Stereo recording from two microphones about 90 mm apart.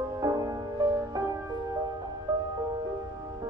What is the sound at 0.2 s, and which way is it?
Music, 45° right (ahead or behind).